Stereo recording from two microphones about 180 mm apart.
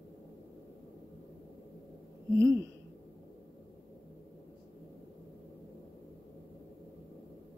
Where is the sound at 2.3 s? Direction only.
15° right (ahead or behind).